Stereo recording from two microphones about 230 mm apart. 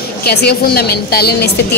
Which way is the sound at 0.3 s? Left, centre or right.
Left.